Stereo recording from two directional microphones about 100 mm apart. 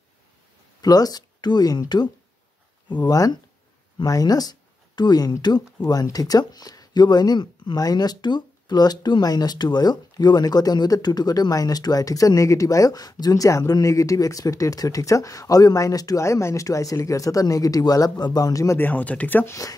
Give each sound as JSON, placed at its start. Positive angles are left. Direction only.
{"t": 0.7, "sound": "speech", "side_deg": 40}
{"t": 18.8, "sound": "speech", "side_deg": 15}